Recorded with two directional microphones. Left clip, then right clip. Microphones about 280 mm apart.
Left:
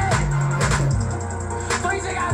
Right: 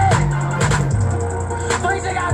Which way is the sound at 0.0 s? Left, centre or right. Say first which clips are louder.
Right 5 dB; centre.